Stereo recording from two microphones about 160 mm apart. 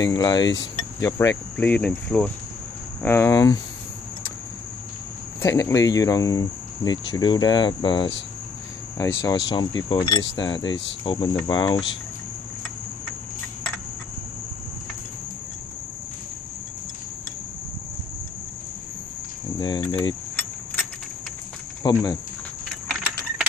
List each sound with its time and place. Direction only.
0.0 s cricket: 25° left (ahead or behind)
1.0 s speech: 15° left (ahead or behind)
3.0 s cricket: 15° left (ahead or behind)
5.4 s cricket: 20° left (ahead or behind)
9.2 s cricket: 25° left (ahead or behind)
19.6 s cricket: 30° left (ahead or behind)
21.8 s cricket: 25° left (ahead or behind)
22.8 s keys jangling: 5° right (ahead or behind)